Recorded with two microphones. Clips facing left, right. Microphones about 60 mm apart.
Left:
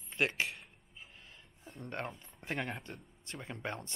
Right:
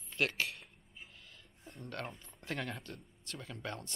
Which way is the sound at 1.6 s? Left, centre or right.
Centre.